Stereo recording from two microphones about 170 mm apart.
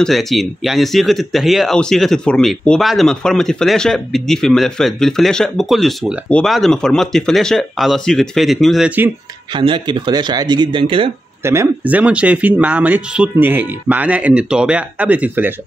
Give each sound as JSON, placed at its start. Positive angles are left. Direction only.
{"t": 0.0, "sound": "speech", "side_deg": 0}
{"t": 9.6, "sound": "speech", "side_deg": -30}
{"t": 11.4, "sound": "speech", "side_deg": -15}